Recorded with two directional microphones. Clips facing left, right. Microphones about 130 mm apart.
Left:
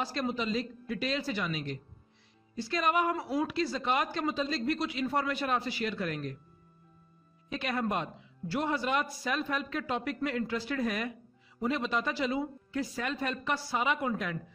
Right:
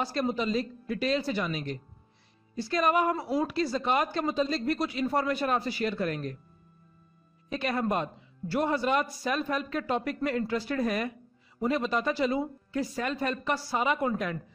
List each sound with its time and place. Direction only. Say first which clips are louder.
0.1 s a man's voice: right 4 dB; 40° right (ahead or behind)
7.4 s a man's voice: right 3 dB; 40° right (ahead or behind)